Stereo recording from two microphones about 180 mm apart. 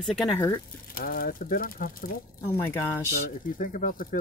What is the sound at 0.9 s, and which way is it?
Speech, 55° left (ahead or behind).